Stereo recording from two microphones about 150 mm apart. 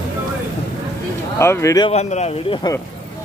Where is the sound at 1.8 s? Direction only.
45° left (ahead or behind).